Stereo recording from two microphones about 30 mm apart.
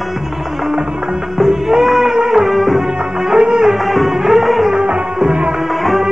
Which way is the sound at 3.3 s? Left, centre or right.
Right.